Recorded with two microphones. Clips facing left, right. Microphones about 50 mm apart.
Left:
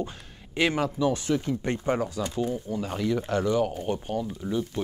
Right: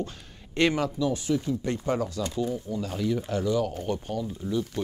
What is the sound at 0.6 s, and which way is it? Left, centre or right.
Speech, centre.